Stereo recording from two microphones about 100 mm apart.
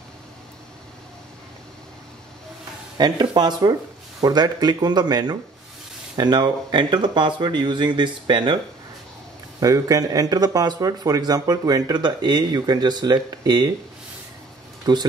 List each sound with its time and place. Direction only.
3.0 s speech: 45° right (ahead or behind)
9.6 s speech: 35° right (ahead or behind)
14.9 s speech: 45° right (ahead or behind)